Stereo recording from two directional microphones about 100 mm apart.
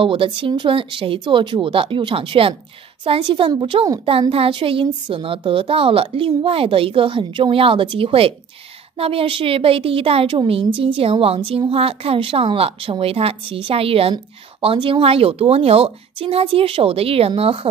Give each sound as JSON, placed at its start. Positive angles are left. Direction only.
{"t": 0.0, "sound": "a woman's voice", "side_deg": -60}
{"t": 3.0, "sound": "a woman's voice", "side_deg": -55}
{"t": 3.7, "sound": "a woman's voice", "side_deg": -90}
{"t": 4.2, "sound": "a woman's voice", "side_deg": -60}